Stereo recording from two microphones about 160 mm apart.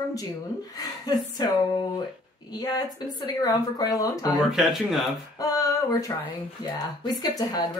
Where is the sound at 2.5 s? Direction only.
25° left (ahead or behind).